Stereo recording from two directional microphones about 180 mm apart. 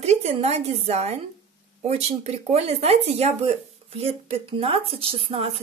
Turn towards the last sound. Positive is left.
turn(degrees=-35)  # may be behind; listen again after turning